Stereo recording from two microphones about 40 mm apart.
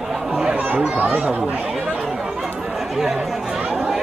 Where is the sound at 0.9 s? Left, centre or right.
Right.